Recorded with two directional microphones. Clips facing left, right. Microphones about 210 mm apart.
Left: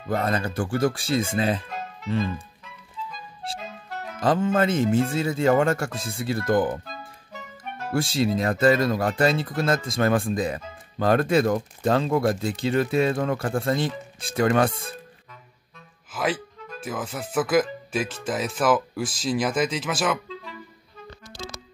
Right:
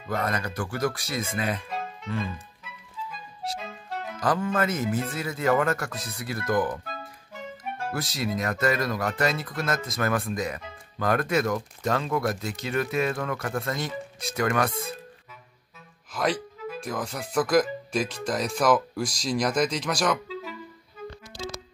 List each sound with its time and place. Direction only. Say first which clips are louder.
0.1 s speech: left 4 dB; 30° left (ahead or behind)
4.2 s speech: left 4 dB; 25° left (ahead or behind)
7.9 s speech: left 8 dB; 30° left (ahead or behind)
16.1 s music: even; 5° left (ahead or behind)
16.8 s speech: left 3 dB; 5° left (ahead or behind)